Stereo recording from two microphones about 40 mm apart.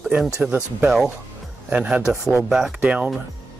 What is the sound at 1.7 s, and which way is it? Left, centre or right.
Speech, right.